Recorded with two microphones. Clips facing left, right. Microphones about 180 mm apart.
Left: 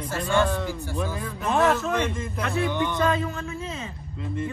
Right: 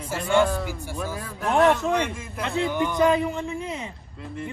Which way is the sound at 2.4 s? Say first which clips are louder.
Right 1 dB; 15° right (ahead or behind).